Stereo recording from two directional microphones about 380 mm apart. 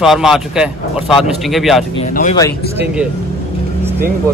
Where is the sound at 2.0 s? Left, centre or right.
Centre.